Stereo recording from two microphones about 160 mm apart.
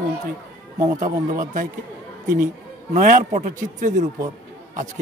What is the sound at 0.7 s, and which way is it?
Speech, 50° right (ahead or behind).